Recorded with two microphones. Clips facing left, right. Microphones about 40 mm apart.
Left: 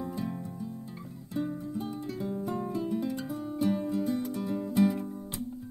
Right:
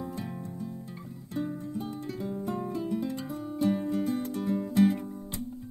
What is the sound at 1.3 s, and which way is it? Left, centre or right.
Music, centre.